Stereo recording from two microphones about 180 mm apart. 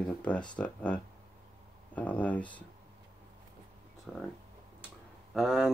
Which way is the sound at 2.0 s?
10° left (ahead or behind).